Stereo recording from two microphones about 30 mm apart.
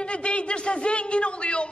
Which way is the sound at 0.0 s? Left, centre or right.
Left.